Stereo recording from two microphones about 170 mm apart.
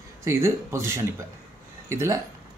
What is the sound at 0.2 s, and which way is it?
Speech, 15° right (ahead or behind).